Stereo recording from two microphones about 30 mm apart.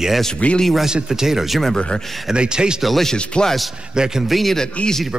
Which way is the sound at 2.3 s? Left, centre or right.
Right.